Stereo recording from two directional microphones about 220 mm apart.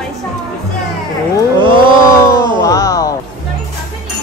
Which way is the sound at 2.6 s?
15° left (ahead or behind).